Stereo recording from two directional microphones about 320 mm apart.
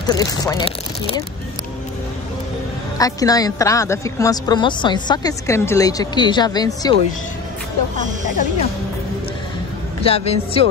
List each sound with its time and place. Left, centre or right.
0.1 s a woman's voice: centre
3.0 s a woman's voice: centre
10.0 s a woman's voice: centre